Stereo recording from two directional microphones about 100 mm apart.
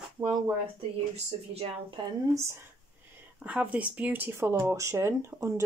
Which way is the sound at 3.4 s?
15° right (ahead or behind).